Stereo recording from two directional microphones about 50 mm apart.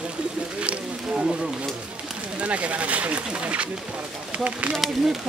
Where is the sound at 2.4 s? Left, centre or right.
Right.